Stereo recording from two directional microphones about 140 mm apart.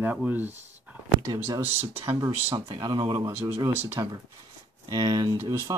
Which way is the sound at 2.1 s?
30° right (ahead or behind).